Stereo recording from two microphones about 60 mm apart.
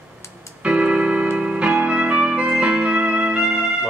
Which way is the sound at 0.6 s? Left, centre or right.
Centre.